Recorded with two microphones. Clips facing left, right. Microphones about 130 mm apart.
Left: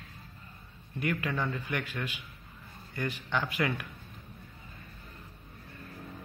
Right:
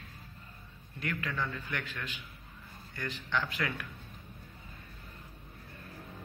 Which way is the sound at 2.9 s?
10° left (ahead or behind).